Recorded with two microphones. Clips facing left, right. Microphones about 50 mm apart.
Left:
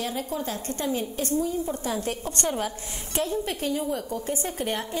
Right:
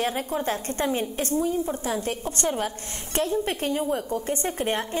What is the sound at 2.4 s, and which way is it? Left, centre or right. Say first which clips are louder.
A woman's voice: right 2 dB; right.